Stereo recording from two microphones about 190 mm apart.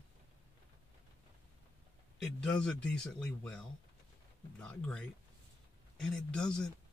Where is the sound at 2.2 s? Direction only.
5° left (ahead or behind).